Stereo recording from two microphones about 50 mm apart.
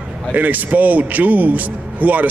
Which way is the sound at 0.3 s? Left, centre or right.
Right.